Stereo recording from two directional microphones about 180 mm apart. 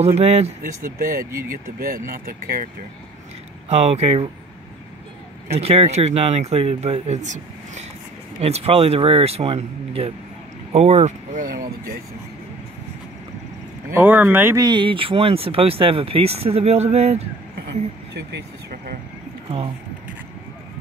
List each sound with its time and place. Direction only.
0.0 s speech: 35° right (ahead or behind)
0.8 s speech: 50° right (ahead or behind)
3.6 s speech: 35° right (ahead or behind)
5.5 s speech: 35° right (ahead or behind); by 12.0 s 55° right (ahead or behind)
13.8 s speech: 10° right (ahead or behind); by 17.3 s 35° right (ahead or behind)
18.1 s a sound: 60° right (ahead or behind)